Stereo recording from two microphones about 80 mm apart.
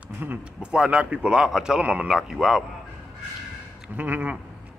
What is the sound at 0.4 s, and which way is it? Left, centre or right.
Speech, centre.